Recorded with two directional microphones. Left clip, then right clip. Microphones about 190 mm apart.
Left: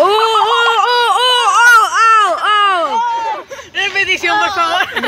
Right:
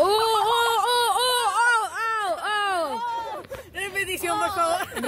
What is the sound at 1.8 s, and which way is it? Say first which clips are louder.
Baby cry: left 17 dB; 10° left (ahead or behind).